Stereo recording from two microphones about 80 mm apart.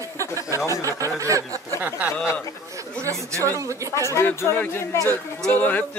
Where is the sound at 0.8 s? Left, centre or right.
Right.